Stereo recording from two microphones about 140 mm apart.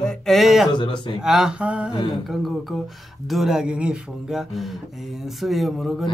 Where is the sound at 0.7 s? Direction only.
35° left (ahead or behind).